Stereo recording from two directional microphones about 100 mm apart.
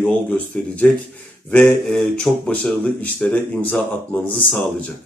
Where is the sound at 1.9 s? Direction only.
10° left (ahead or behind).